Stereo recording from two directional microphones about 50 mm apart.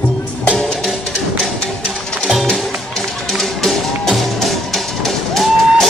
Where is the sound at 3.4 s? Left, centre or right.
Centre.